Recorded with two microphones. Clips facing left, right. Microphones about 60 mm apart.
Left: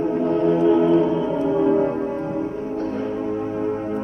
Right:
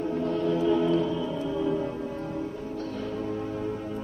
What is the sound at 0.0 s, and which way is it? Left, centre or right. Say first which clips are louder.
Music: left 8 dB; left.